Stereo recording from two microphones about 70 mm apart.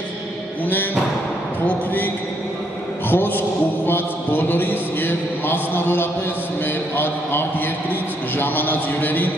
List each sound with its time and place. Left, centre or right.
3.1 s mantra: left